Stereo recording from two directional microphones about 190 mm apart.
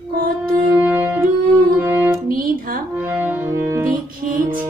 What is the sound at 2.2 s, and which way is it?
Music, 50° right (ahead or behind).